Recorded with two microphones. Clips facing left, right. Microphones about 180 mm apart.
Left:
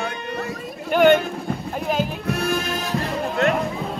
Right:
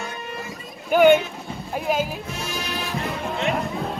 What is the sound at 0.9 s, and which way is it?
Speech, 5° right (ahead or behind).